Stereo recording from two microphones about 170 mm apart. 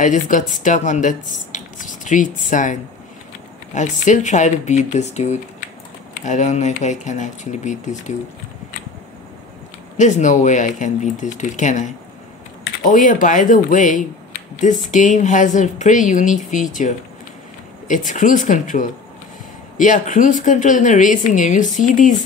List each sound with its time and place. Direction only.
0.0 s speech: 45° left (ahead or behind)
9.9 s speech: 45° left (ahead or behind)